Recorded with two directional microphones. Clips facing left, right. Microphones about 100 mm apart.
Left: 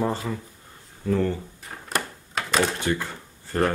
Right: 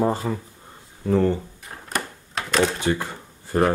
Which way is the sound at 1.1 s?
25° right (ahead or behind).